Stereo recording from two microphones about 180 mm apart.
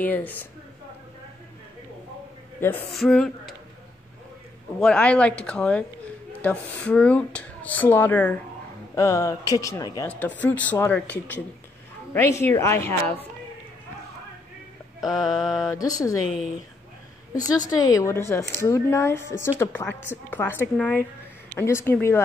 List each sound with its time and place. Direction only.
0.0 s speech: 10° left (ahead or behind)
2.9 s speech: centre (ahead or behind)
4.7 s speech: 5° left (ahead or behind); by 10.0 s 20° left (ahead or behind)
10.0 s speech: 10° left (ahead or behind)
12.1 s speech: 15° left (ahead or behind)
15.0 s speech: centre (ahead or behind)
15.7 s speech: 20° left (ahead or behind)
17.3 s speech: 20° left (ahead or behind)